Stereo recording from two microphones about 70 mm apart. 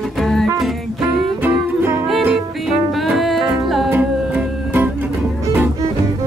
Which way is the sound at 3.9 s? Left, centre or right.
Right.